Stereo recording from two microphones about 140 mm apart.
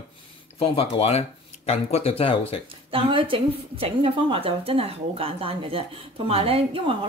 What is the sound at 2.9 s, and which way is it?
Speech, 35° right (ahead or behind).